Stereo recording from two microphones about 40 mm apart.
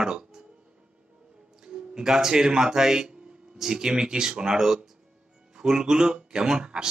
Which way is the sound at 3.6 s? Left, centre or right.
Centre.